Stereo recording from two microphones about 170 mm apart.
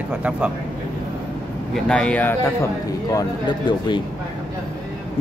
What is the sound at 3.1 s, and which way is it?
Speech, 25° left (ahead or behind).